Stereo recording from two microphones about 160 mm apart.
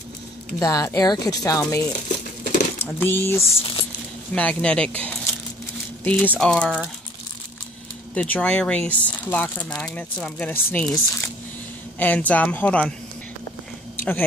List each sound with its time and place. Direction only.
0.6 s speech: 20° left (ahead or behind)
8.1 s speech: 10° left (ahead or behind)
13.9 s a sound: 15° left (ahead or behind)